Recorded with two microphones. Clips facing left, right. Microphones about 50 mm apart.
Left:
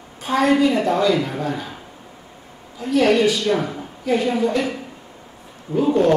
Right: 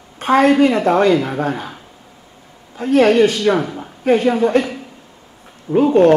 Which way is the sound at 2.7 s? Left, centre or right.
Right.